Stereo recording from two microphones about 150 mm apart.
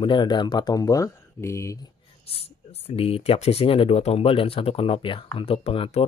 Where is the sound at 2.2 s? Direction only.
45° left (ahead or behind).